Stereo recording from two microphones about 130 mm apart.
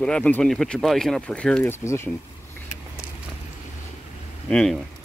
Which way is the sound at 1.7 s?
20° left (ahead or behind).